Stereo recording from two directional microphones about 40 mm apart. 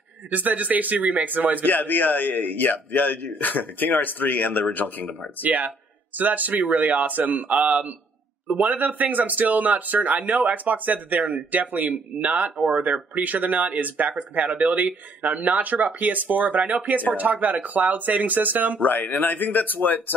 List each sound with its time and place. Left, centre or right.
0.3 s speech: right
1.7 s a man's voice: left
5.4 s speech: right
18.8 s a man's voice: left